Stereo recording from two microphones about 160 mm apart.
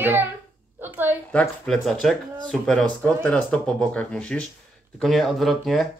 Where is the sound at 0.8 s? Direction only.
10° right (ahead or behind).